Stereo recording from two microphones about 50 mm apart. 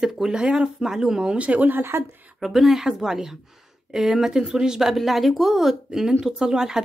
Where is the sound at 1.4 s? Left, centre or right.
Right.